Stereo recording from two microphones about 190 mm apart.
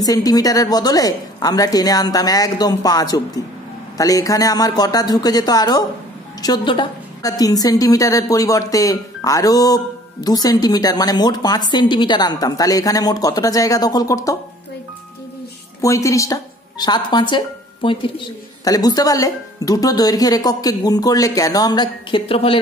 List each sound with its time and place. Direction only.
0.0 s a woman's voice: 20° left (ahead or behind)
15.8 s a woman's voice: 15° left (ahead or behind)